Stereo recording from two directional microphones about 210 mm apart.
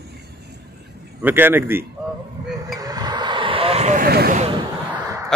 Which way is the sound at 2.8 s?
20° right (ahead or behind).